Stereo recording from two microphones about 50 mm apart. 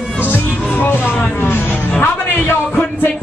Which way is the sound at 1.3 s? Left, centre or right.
Left.